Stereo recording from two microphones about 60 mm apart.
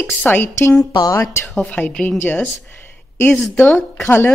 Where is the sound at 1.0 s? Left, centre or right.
Left.